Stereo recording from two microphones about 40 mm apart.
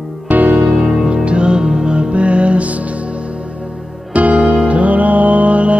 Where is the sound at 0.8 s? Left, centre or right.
Centre.